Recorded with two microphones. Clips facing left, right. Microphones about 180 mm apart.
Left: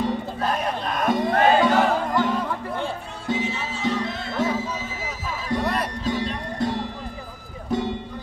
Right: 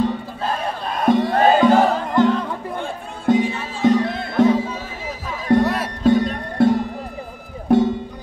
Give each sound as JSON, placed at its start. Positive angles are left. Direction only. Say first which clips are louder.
{"t": 0.9, "sound": "music", "louder": "right 5 dB", "side_deg": -30}
{"t": 2.1, "sound": "music", "louder": "right 6 dB", "side_deg": 10}
{"t": 2.8, "sound": "music", "louder": "right 2 dB", "side_deg": -55}
{"t": 5.5, "sound": "music", "louder": "right 8 dB", "side_deg": -60}
{"t": 7.7, "sound": "music", "louder": "right 10 dB", "side_deg": -60}